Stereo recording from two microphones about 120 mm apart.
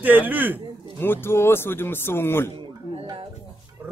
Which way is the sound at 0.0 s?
15° right (ahead or behind).